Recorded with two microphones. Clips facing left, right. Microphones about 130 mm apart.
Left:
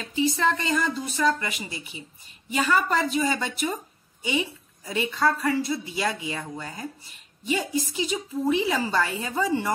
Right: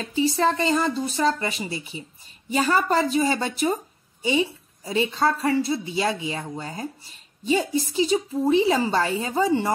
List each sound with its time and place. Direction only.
0.0 s a woman's voice: 35° right (ahead or behind)